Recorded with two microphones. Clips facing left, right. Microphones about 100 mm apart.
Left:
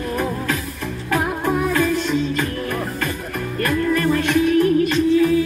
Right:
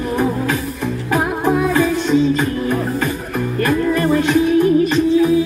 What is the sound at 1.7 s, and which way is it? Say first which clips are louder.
Music: right 4 dB; 15° right (ahead or behind).